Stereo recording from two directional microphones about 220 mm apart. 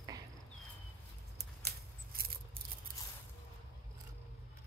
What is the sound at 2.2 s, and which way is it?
Scissors, 40° right (ahead or behind).